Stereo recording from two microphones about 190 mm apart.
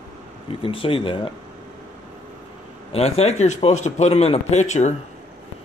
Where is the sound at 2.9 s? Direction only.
35° left (ahead or behind).